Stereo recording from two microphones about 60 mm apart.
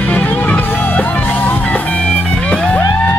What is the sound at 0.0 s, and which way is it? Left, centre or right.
Music, left.